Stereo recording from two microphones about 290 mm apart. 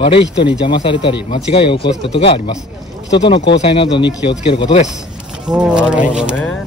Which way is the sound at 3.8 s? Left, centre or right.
Centre.